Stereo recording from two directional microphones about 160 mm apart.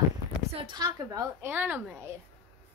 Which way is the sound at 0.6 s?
25° right (ahead or behind).